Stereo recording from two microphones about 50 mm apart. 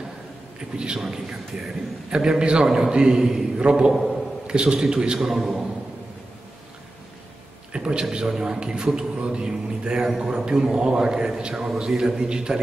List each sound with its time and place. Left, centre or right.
0.6 s a man's voice: centre
3.9 s a man's voice: centre
4.5 s a man's voice: centre
5.3 s a man's voice: centre
7.7 s a man's voice: centre